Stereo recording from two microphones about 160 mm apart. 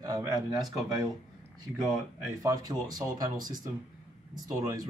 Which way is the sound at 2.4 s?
20° right (ahead or behind).